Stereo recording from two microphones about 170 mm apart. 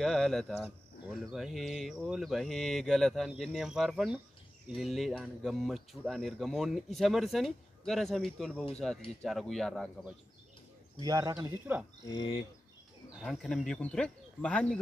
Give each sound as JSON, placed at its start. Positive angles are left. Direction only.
{"t": 0.0, "sound": "speech", "side_deg": 5}
{"t": 11.0, "sound": "speech", "side_deg": -20}
{"t": 12.1, "sound": "speech", "side_deg": 25}
{"t": 13.2, "sound": "speech", "side_deg": 0}